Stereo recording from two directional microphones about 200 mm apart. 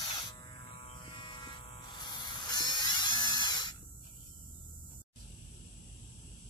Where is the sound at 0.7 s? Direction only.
25° left (ahead or behind).